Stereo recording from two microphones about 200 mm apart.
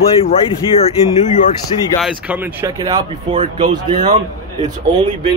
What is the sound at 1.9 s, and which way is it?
Speech, 5° right (ahead or behind).